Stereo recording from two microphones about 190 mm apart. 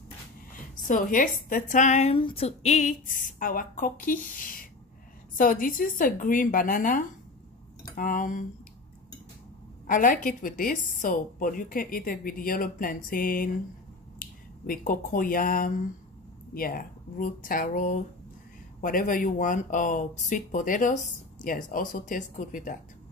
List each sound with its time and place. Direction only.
0.8 s speech: 45° left (ahead or behind)
9.8 s speech: 45° left (ahead or behind)